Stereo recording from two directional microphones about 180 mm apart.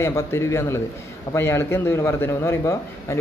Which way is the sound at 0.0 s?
15° left (ahead or behind).